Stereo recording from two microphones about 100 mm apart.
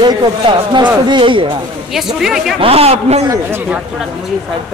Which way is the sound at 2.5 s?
80° right.